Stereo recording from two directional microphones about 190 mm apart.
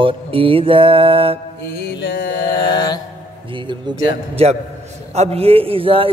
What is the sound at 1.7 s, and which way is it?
Speech, 55° left (ahead or behind).